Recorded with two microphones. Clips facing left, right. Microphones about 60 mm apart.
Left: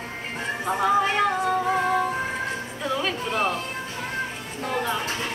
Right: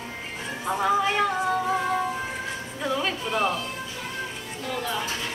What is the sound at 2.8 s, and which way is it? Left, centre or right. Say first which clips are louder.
Music: even; centre.